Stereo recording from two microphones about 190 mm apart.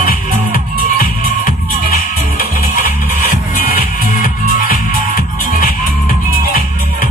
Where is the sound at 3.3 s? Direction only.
45° left (ahead or behind).